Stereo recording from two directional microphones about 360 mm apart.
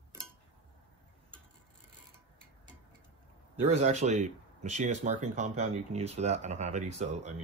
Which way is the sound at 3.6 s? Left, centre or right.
Centre.